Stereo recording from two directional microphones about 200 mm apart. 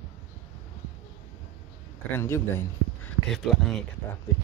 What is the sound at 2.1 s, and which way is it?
Speech, 10° left (ahead or behind).